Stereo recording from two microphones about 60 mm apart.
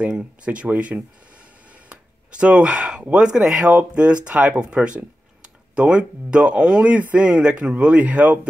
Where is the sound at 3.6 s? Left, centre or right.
Right.